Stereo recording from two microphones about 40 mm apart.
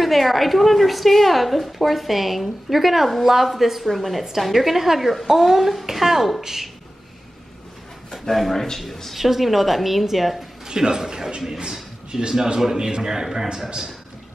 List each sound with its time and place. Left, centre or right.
0.0 s a woman's voice: centre
8.1 s a woman's voice: centre
10.7 s a man's voice: centre